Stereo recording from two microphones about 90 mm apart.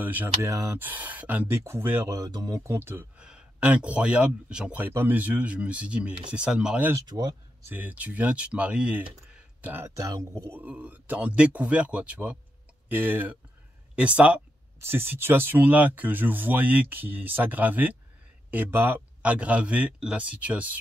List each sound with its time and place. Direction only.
0.0 s speech: 20° right (ahead or behind)
0.4 s speech: 30° right (ahead or behind)
2.0 s speech: 40° right (ahead or behind)
2.6 s speech: 30° right (ahead or behind)
3.2 s speech: 10° right (ahead or behind)
7.1 s speech: 50° right (ahead or behind)
7.6 s speech: 20° right (ahead or behind)
9.3 s a sound: 20° right (ahead or behind)
9.9 s speech: 40° right (ahead or behind)
10.6 s speech: 15° right (ahead or behind)
14.8 s speech: 25° right (ahead or behind)